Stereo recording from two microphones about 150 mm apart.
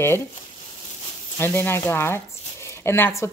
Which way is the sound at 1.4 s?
15° left (ahead or behind).